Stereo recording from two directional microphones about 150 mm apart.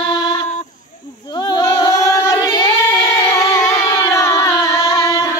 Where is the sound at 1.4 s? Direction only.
25° left (ahead or behind).